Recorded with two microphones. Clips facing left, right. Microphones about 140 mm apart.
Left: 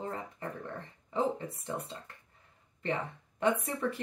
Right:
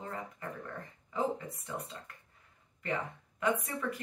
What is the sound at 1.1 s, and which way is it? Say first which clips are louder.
Speech: left 2 dB; 30° left (ahead or behind).